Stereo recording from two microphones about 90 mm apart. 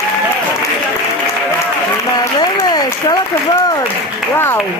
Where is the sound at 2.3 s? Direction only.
50° left (ahead or behind).